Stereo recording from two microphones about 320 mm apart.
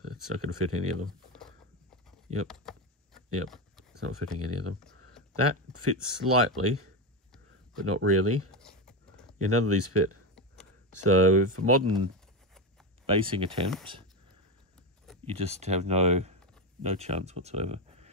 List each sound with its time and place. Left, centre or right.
0.0 s speech: right
2.4 s a sound: centre
4.0 s speech: right
8.5 s a sound: centre
9.4 s speech: right
10.3 s a sound: centre
11.1 s speech: right
13.0 s speech: centre
15.2 s speech: centre